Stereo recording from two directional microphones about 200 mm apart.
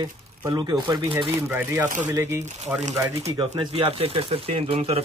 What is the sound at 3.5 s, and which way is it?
Speech, 25° right (ahead or behind).